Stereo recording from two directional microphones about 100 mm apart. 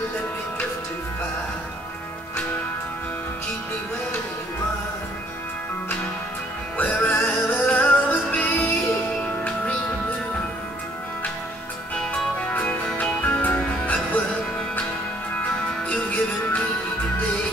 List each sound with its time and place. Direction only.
6.8 s music: 15° left (ahead or behind)
11.9 s music: 10° left (ahead or behind)